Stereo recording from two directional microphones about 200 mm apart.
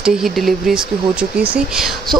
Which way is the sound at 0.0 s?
Centre (ahead or behind).